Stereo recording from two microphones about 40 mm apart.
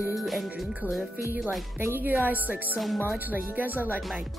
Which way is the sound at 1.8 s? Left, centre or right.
Right.